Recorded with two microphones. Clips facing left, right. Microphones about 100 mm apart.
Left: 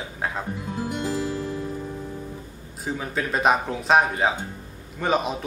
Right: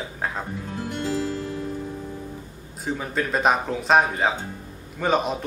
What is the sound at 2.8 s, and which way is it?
Speech, centre (ahead or behind).